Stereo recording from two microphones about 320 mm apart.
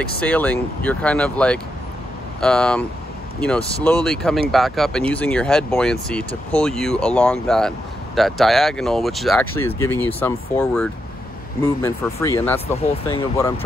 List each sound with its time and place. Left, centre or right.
0.0 s speech: centre